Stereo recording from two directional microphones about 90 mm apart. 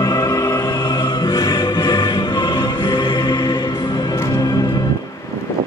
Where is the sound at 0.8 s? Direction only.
60° left (ahead or behind).